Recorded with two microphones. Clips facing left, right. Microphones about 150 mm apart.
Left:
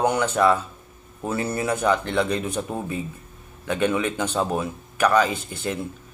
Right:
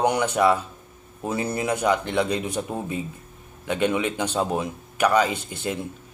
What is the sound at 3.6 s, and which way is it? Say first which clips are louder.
Speech: even; 15° right (ahead or behind).